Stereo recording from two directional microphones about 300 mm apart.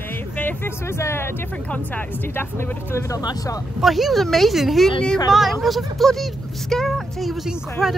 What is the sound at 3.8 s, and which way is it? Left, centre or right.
Speech, centre.